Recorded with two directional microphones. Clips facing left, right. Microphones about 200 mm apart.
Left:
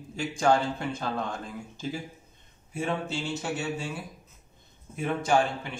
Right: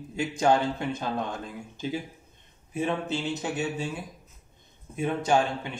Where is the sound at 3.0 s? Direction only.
20° right (ahead or behind).